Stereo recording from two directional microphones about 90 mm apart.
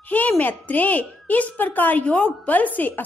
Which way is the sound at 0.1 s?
20° left (ahead or behind).